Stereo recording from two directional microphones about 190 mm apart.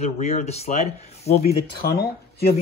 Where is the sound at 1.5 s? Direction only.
55° left (ahead or behind).